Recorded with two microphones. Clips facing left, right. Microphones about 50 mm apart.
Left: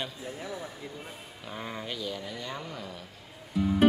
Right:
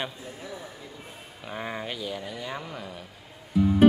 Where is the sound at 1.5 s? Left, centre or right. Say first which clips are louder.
Right 4 dB; right.